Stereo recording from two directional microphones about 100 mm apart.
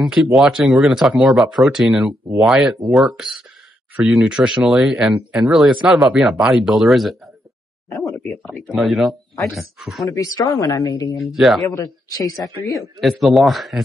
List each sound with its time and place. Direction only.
0.0 s speech: centre (ahead or behind)
8.0 s a sound: centre (ahead or behind)
8.5 s speech: centre (ahead or behind)
10.1 s speech: 35° left (ahead or behind)
11.1 s speech: centre (ahead or behind)
11.7 s speech: 35° left (ahead or behind)
12.6 s speech: centre (ahead or behind)